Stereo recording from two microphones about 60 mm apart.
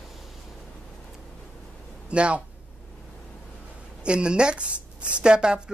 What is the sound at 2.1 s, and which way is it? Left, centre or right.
Speech, centre.